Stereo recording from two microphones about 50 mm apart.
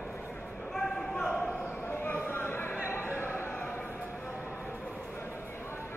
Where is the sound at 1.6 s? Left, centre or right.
Left.